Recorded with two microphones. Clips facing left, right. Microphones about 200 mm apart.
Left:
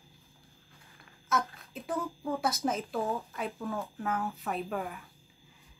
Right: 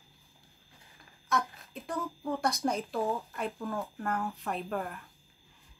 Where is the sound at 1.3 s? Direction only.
Centre (ahead or behind).